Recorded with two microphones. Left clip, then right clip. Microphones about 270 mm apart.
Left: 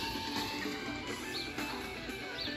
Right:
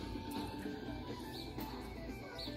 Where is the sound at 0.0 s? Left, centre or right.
Left.